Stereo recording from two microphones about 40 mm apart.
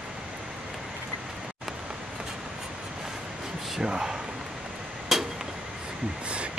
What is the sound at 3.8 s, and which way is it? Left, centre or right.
Speech, right.